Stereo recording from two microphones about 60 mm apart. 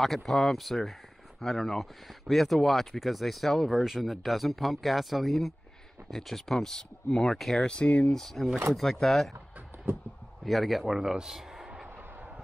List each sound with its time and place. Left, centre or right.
0.0 s speech: centre
7.7 s speech: centre
8.1 s speech: centre
10.4 s a man's voice: centre